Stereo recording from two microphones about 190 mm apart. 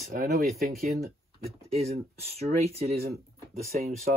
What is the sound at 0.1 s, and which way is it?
Speech, 55° right (ahead or behind).